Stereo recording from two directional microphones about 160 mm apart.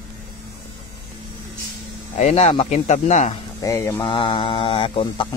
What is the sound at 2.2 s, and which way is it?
Speech, 45° left (ahead or behind).